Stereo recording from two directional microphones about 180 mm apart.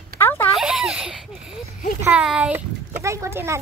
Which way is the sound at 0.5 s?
5° right (ahead or behind).